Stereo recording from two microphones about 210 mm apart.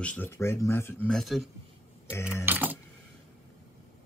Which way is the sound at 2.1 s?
10° left (ahead or behind).